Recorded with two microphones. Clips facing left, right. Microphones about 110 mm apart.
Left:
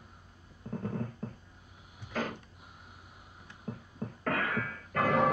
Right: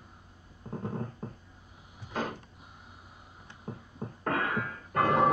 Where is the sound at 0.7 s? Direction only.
25° right (ahead or behind).